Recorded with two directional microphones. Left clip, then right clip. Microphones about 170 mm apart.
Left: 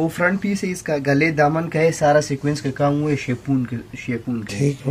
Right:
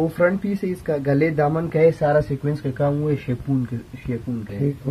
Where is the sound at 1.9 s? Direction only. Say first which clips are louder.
Left 3 dB; 20° left (ahead or behind).